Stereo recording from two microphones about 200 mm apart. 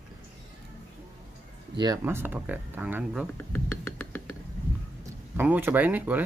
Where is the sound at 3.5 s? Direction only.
10° left (ahead or behind).